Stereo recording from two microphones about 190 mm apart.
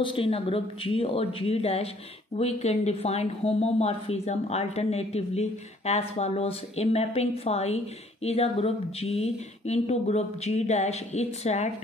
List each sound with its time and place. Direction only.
0.0 s speech: 30° left (ahead or behind)